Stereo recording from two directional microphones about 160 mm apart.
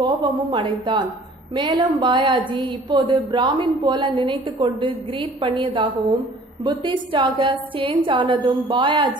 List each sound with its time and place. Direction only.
0.0 s a woman's voice: 30° right (ahead or behind)